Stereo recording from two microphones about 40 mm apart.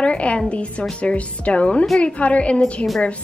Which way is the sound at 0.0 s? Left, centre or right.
Left.